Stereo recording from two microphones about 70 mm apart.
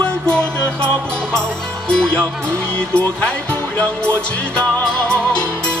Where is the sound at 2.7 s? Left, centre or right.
Centre.